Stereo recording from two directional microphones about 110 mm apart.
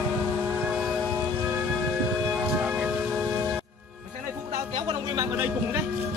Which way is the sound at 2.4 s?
5° right (ahead or behind).